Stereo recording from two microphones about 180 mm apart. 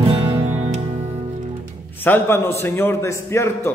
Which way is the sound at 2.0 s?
10° left (ahead or behind).